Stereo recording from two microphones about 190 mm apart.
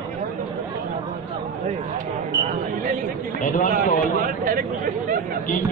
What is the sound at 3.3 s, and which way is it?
Speech, 45° left (ahead or behind).